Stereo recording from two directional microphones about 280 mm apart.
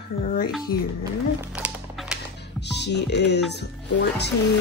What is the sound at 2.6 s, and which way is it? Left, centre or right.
Music, left.